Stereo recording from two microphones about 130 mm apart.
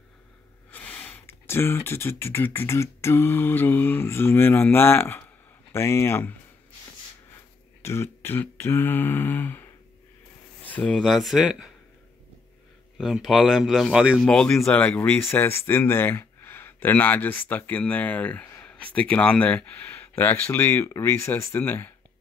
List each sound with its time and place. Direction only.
0.7 s speech: 15° left (ahead or behind)
7.8 s speech: 20° left (ahead or behind)
10.7 s speech: 10° left (ahead or behind)
12.9 s speech: centre (ahead or behind); by 21.9 s 15° left (ahead or behind)